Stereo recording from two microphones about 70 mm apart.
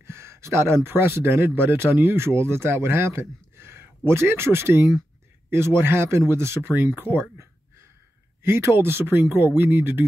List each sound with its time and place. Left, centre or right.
0.0 s speech: right